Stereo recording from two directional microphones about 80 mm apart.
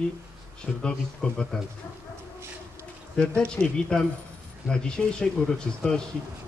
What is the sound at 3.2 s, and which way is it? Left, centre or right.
Speech, centre.